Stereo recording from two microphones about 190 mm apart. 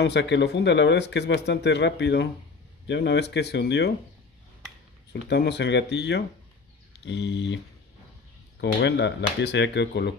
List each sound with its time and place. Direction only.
0.0 s speech: 65° left (ahead or behind)
5.1 s speech: 65° left (ahead or behind)
7.1 s a sound: 65° left (ahead or behind)
8.5 s speech: 65° left (ahead or behind)